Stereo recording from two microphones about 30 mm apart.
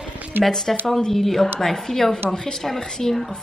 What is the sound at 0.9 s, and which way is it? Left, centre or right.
Speech, centre.